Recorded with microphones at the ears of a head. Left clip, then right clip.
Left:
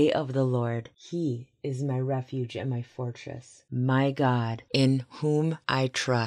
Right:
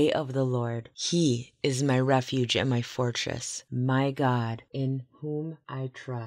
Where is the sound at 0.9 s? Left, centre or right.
Right.